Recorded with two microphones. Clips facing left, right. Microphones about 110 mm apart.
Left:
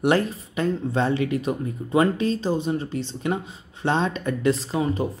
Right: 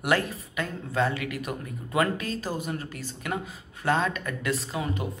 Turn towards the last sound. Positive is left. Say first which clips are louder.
# left 6 dB
turn(degrees=30)  # may be behind; listen again after turning